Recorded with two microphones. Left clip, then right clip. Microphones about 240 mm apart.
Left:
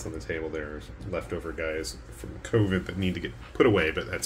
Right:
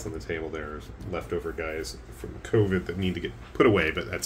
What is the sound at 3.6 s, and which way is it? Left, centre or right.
Speech, centre.